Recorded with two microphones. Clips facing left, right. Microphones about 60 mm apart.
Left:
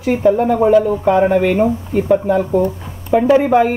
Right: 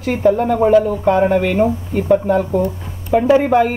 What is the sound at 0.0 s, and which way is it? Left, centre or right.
Speech, centre.